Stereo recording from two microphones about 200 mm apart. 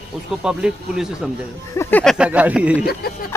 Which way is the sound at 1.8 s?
10° left (ahead or behind).